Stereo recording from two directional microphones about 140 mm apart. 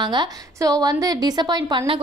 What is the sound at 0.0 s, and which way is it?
A woman's voice, 30° right (ahead or behind).